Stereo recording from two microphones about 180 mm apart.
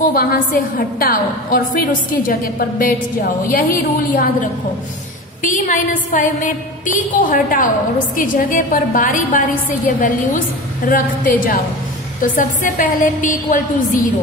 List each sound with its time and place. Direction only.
0.0 s a woman's voice: 55° left (ahead or behind)
3.5 s a woman's voice: 50° left (ahead or behind)
5.4 s a woman's voice: 45° left (ahead or behind)